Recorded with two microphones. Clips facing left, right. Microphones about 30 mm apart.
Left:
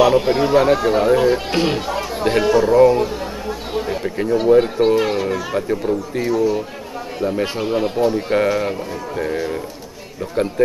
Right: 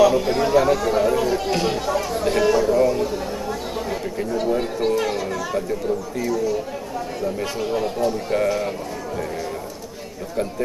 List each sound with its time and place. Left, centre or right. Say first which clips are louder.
0.0 s a child's voice: left 2 dB; left